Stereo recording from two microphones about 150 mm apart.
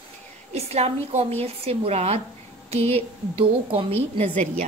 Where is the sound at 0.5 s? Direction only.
45° right (ahead or behind).